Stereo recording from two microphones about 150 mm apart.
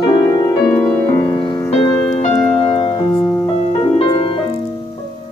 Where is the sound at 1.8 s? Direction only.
40° left (ahead or behind).